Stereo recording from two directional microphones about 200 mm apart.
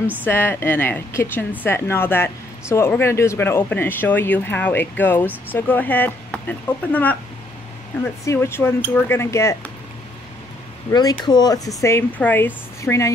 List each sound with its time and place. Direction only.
0.2 s speech: 10° left (ahead or behind)
10.9 s speech: 20° left (ahead or behind)